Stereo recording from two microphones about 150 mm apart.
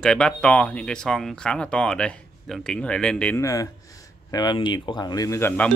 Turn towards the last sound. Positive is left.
turn(degrees=15)  # may be behind; listen again after turning